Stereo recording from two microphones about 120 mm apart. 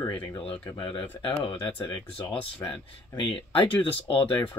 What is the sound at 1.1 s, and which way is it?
Speech, 50° left (ahead or behind).